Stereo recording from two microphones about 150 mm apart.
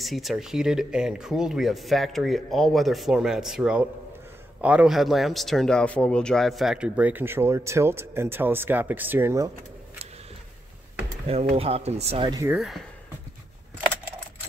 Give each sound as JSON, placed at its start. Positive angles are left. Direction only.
{"t": 0.0, "sound": "a man's voice", "side_deg": 0}
{"t": 11.5, "sound": "speech", "side_deg": -40}
{"t": 12.4, "sound": "speech", "side_deg": -5}